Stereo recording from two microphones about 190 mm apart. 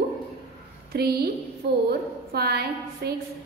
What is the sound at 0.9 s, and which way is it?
A woman's voice, 55° right (ahead or behind).